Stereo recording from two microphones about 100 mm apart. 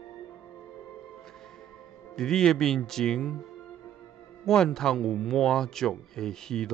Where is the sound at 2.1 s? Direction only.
5° left (ahead or behind).